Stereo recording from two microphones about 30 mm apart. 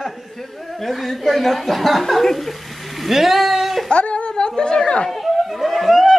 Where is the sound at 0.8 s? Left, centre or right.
Centre.